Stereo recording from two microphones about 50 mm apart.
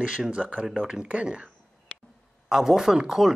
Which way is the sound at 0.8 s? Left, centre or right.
Centre.